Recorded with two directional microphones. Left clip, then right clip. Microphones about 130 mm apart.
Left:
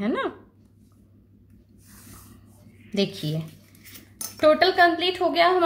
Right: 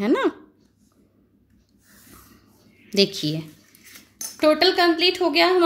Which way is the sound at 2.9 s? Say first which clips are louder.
Right 6 dB; 35° right (ahead or behind).